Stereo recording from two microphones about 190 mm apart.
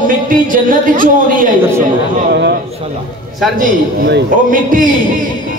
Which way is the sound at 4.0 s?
45° right (ahead or behind).